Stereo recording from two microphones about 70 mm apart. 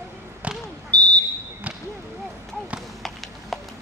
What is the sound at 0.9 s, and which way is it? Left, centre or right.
Smoke detector, centre.